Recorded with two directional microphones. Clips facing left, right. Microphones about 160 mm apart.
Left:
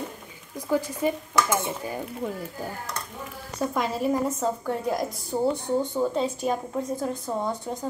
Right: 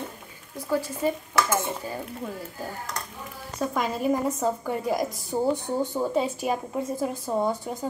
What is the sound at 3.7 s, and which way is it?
A woman's voice, centre (ahead or behind).